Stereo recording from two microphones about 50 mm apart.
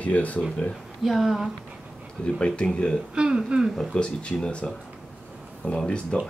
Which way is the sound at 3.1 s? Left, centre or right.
Centre.